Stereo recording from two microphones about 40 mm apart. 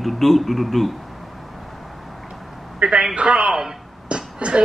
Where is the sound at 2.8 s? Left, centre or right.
Right.